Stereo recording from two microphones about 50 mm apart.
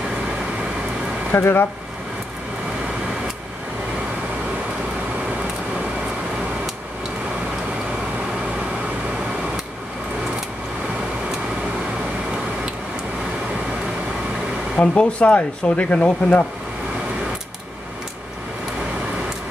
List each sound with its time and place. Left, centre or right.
1.3 s speech: left
14.8 s speech: left